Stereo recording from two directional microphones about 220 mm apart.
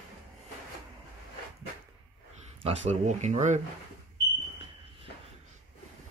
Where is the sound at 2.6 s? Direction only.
30° right (ahead or behind).